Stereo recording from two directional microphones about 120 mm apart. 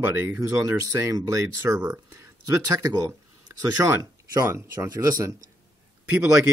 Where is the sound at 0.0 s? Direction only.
15° right (ahead or behind).